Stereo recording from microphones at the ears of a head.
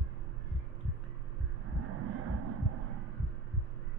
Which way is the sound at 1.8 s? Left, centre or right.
Right.